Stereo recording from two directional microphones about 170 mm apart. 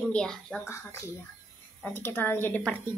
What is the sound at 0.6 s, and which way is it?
A woman's voice, 15° left (ahead or behind).